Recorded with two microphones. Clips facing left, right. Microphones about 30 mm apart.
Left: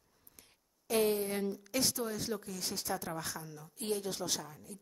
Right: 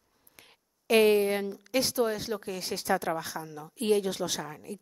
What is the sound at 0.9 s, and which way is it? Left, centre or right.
Speech, right.